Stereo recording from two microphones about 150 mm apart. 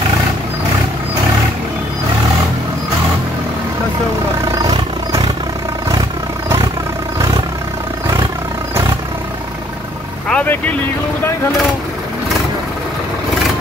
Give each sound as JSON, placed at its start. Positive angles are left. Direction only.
{"t": 4.5, "sound": "music", "side_deg": -25}
{"t": 10.3, "sound": "vehicle", "side_deg": 10}